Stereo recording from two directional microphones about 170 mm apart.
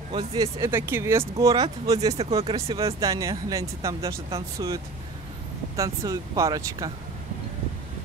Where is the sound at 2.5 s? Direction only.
20° right (ahead or behind).